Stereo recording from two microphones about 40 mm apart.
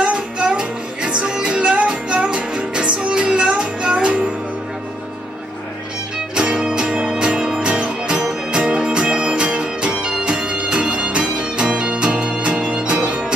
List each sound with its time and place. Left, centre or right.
0.0 s music: right
6.4 s music: right